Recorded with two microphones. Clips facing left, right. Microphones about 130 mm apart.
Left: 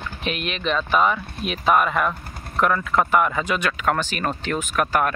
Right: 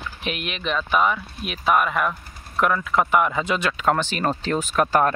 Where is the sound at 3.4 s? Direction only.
25° right (ahead or behind).